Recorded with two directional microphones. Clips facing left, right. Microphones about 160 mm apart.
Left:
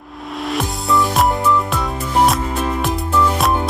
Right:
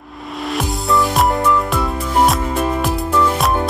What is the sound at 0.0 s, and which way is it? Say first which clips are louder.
Music: even; centre (ahead or behind).